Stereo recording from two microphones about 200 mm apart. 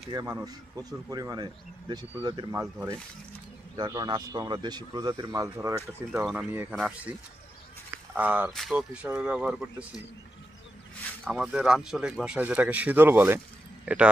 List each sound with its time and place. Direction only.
0.1 s speech: 15° right (ahead or behind)
11.2 s speech: 5° right (ahead or behind)